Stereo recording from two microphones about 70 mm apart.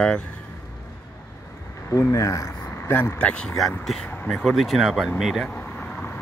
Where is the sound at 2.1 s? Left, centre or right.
Left.